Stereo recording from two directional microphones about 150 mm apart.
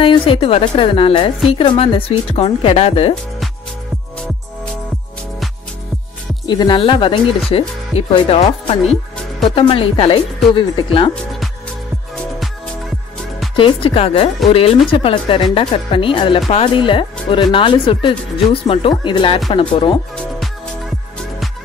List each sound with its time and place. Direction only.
0.0 s speech: 35° left (ahead or behind)
6.4 s speech: 30° left (ahead or behind)
13.6 s speech: 35° left (ahead or behind)